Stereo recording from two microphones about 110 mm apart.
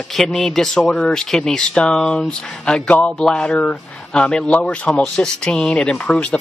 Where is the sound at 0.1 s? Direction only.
Centre (ahead or behind).